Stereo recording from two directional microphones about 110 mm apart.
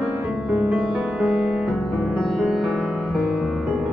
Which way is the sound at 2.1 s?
Centre (ahead or behind).